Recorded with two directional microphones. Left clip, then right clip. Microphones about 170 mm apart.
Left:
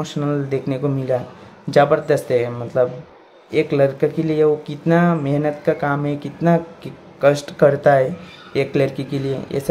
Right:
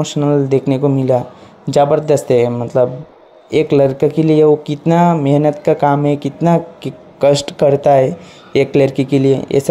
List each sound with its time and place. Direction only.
0.0 s speech: 30° right (ahead or behind)